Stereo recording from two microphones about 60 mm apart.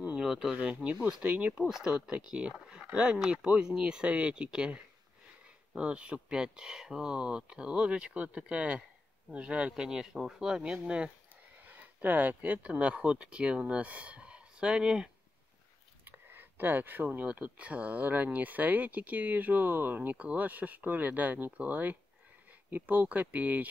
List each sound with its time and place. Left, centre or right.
0.1 s speech: centre
5.8 s speech: centre
9.8 s speech: centre
11.6 s speech: right
16.1 s a sound: right
17.3 s speech: right